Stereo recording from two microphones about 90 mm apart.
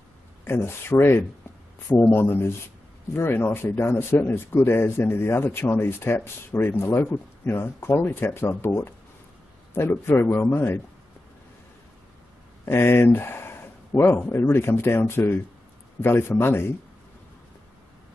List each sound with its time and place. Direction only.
0.5 s speech: 30° left (ahead or behind)
12.6 s speech: 25° left (ahead or behind)